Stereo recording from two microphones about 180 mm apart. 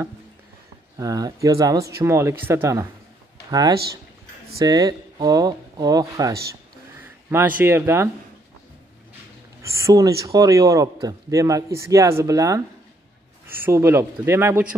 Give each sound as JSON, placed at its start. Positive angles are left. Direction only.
{"t": 0.9, "sound": "a man's voice", "side_deg": -20}
{"t": 9.6, "sound": "a man's voice", "side_deg": -15}
{"t": 13.7, "sound": "a man's voice", "side_deg": -15}